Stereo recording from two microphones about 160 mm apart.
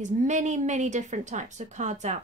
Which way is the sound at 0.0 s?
50° right (ahead or behind).